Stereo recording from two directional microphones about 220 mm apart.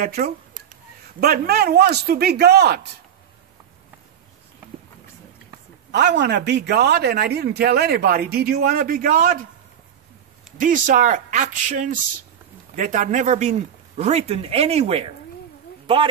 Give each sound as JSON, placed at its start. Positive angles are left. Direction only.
{"t": 0.0, "sound": "a sound", "side_deg": -40}
{"t": 1.2, "sound": "speech", "side_deg": -45}
{"t": 5.9, "sound": "speech", "side_deg": -50}
{"t": 10.6, "sound": "speech", "side_deg": -35}